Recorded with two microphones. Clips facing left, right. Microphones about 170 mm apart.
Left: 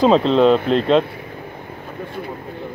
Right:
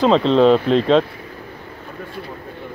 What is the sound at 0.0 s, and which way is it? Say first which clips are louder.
Speech: even; 5° left (ahead or behind).